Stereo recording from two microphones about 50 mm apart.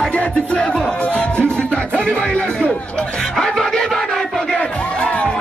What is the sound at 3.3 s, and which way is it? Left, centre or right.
Music, centre.